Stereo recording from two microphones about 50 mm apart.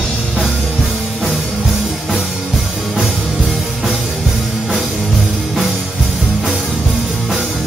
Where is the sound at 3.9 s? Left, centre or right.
Centre.